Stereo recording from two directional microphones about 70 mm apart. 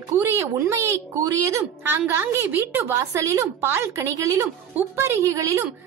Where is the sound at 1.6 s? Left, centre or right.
Right.